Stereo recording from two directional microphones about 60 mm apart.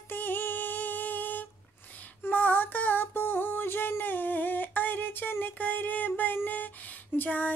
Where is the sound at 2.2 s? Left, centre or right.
Left.